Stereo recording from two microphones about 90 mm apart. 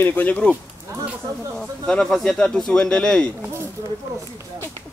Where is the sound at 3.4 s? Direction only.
30° right (ahead or behind).